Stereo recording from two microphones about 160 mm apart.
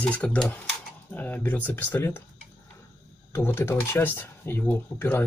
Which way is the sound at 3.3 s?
15° left (ahead or behind).